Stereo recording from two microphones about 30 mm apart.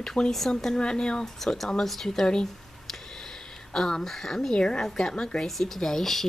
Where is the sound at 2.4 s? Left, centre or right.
Centre.